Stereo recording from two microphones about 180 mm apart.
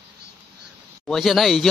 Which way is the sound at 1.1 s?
Centre (ahead or behind).